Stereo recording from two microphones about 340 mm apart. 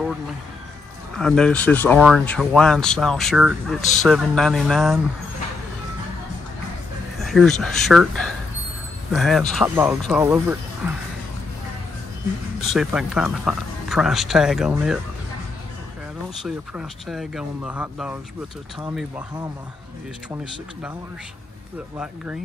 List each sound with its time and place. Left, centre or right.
1.1 s speech: centre
7.2 s speech: centre
12.5 s speech: centre
16.4 s speech: centre
21.9 s speech: centre